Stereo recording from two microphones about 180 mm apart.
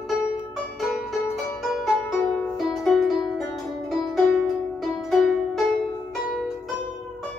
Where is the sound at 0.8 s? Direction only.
Centre (ahead or behind).